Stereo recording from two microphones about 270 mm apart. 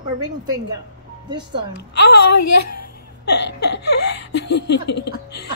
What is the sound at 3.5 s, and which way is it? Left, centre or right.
Speech, left.